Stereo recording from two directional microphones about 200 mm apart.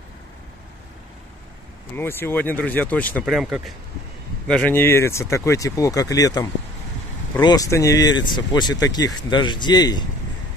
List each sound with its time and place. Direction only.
2.0 s speech: 10° left (ahead or behind)